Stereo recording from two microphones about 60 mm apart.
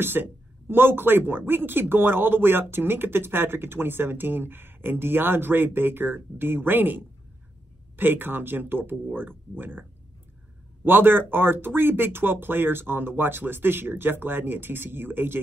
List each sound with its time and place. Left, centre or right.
0.0 s speech: right